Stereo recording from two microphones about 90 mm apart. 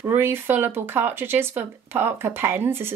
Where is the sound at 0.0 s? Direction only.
25° right (ahead or behind).